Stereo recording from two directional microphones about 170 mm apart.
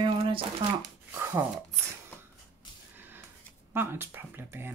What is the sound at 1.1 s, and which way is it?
Shuffling cards, 15° right (ahead or behind).